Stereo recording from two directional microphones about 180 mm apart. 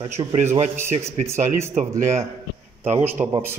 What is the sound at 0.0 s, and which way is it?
Speech, 25° right (ahead or behind).